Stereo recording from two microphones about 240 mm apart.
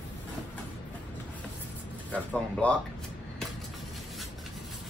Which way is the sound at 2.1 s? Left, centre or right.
Centre.